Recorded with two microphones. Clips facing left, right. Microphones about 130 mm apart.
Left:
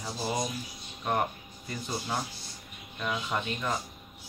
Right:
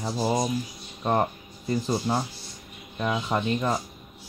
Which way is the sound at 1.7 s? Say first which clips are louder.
Right 9 dB; 30° right (ahead or behind).